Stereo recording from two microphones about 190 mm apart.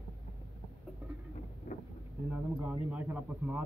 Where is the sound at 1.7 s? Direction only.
35° left (ahead or behind).